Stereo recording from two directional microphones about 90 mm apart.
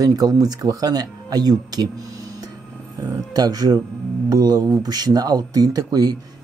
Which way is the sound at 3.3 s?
45° right (ahead or behind).